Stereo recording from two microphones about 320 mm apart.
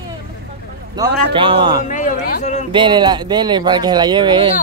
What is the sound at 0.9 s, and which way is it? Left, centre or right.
Speech, centre.